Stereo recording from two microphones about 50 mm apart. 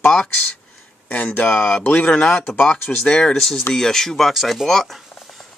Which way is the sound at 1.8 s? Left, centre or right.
Left.